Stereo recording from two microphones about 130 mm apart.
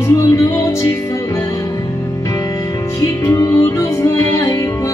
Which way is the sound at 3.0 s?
20° left (ahead or behind).